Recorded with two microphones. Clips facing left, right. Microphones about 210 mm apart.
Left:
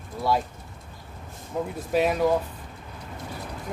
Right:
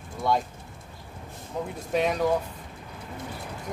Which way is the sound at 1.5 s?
5° left (ahead or behind).